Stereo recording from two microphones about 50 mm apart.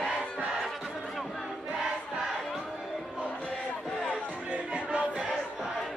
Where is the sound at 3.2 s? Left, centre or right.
Left.